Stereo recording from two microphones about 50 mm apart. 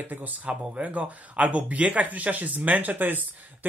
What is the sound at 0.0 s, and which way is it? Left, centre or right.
Speech, right.